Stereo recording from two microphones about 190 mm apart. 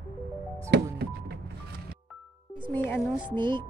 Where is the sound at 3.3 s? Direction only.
25° right (ahead or behind).